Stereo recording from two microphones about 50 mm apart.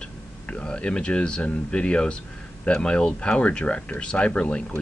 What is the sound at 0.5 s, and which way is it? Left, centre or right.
Speech, centre.